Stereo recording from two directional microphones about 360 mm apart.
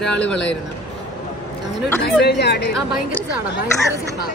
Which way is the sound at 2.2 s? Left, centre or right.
Left.